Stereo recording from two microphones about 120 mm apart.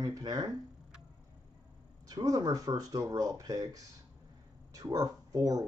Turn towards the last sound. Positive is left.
turn(degrees=-30)  # may be behind; listen again after turning